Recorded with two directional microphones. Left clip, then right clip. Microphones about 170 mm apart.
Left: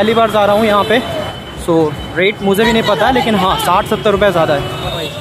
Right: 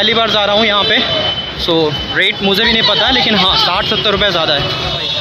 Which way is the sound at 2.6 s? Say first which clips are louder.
Even; 5° left (ahead or behind).